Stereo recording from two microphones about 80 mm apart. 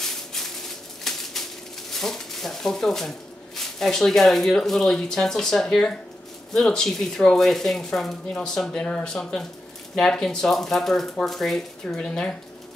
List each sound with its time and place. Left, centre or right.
0.0 s a sound: centre
1.1 s bird: centre
1.9 s speech: centre